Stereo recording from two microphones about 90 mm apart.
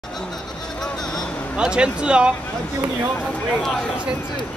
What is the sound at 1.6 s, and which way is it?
Speech, 10° right (ahead or behind).